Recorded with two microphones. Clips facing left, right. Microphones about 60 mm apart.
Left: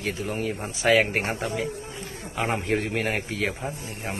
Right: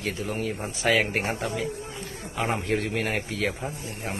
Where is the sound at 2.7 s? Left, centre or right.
Centre.